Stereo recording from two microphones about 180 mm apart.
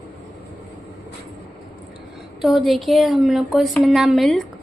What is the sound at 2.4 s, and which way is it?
A woman's voice, centre (ahead or behind).